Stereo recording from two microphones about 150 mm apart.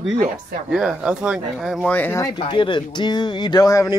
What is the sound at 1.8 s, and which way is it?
Speech, 10° left (ahead or behind).